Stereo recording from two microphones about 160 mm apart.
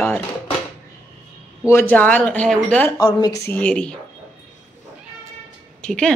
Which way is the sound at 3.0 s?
25° left (ahead or behind).